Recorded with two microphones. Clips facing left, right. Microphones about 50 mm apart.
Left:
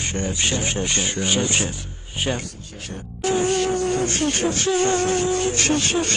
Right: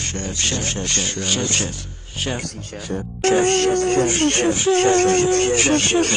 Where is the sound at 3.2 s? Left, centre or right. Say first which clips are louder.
Right 4 dB; right.